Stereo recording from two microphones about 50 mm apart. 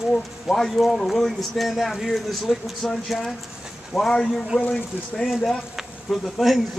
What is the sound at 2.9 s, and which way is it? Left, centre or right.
Speech, centre.